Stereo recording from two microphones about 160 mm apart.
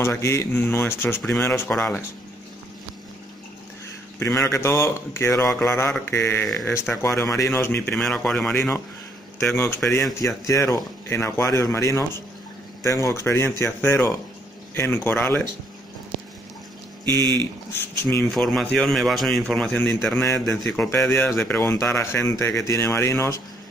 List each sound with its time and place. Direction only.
0.0 s a man's voice: 15° left (ahead or behind)
4.2 s a man's voice: 15° left (ahead or behind)
17.0 s speech: 15° left (ahead or behind)
18.3 s a man's voice: centre (ahead or behind)